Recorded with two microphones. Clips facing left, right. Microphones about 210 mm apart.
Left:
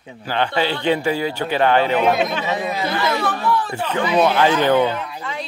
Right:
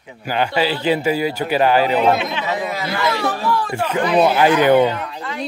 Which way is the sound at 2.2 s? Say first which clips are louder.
Left 3 dB; 45° left (ahead or behind).